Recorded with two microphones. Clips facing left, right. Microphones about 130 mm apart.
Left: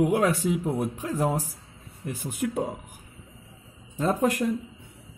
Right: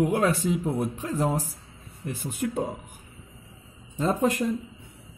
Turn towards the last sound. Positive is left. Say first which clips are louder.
# even
turn(degrees=5)  # may be behind; listen again after turning